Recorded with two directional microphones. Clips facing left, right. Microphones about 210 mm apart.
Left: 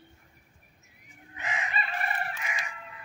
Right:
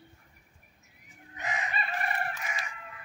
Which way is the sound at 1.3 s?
40° right (ahead or behind).